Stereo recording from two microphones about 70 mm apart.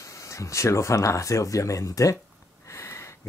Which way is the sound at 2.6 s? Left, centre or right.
Left.